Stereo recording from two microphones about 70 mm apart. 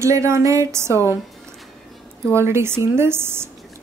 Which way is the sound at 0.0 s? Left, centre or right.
Right.